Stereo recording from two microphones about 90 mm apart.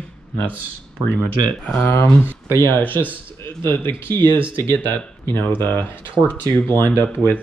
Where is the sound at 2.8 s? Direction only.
20° left (ahead or behind).